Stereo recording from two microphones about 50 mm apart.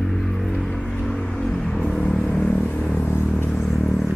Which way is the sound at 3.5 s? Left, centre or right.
Centre.